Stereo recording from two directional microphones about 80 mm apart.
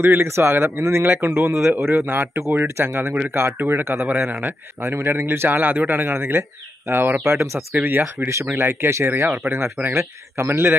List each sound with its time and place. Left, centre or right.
0.0 s speech: right
7.7 s speech: right